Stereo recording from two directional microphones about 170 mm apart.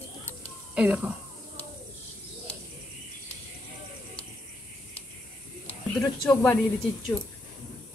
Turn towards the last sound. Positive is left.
turn(degrees=10)  # may be behind; listen again after turning